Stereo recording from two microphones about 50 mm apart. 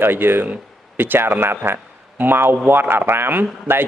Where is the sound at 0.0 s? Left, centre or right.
Right.